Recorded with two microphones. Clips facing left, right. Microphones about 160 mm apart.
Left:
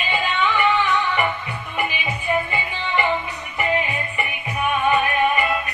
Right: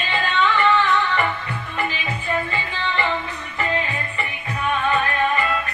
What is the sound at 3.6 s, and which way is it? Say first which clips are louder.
Music: left 2 dB; 15° left (ahead or behind).